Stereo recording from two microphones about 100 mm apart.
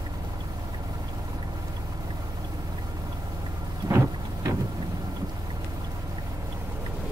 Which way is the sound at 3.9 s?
30° right (ahead or behind).